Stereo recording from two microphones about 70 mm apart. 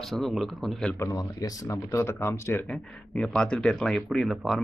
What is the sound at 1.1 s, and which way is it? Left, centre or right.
Speech, left.